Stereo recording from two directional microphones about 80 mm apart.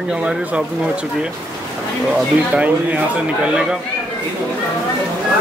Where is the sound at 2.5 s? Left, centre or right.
Centre.